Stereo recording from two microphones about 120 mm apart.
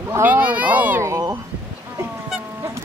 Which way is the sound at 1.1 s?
25° right (ahead or behind).